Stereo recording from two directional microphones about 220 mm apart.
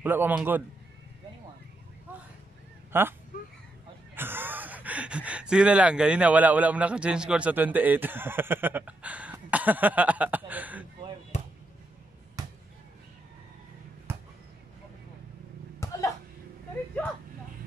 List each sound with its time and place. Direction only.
0.0 s a man's voice: 10° right (ahead or behind)
2.9 s speech: 10° right (ahead or behind)
12.4 s basketball bounce: 15° right (ahead or behind)
14.1 s basketball bounce: 10° right (ahead or behind)
15.8 s chuckle: 15° left (ahead or behind)